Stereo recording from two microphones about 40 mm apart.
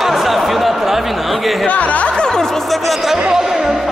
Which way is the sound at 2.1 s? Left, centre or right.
Centre.